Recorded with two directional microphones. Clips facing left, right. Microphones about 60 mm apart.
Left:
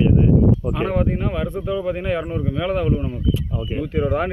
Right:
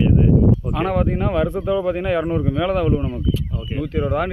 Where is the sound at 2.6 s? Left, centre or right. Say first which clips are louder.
Even; centre.